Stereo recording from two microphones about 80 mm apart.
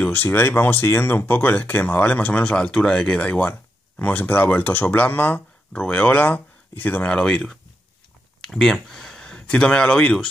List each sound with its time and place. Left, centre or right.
0.0 s speech: left